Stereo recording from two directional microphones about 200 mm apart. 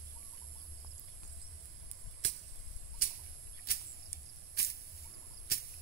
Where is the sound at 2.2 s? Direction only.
35° left (ahead or behind).